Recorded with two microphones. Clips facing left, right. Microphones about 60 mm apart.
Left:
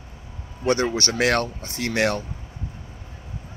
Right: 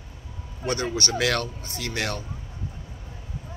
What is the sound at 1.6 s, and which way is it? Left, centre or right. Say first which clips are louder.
Speech: left 7 dB; left.